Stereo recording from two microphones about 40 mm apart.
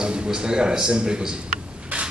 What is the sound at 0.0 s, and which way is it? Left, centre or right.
A man's voice, right.